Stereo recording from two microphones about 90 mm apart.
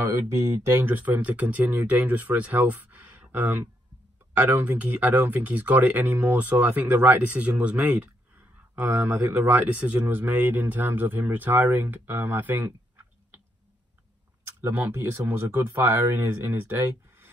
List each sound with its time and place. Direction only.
0.7 s speech: 25° right (ahead or behind)
14.4 s speech: 25° right (ahead or behind)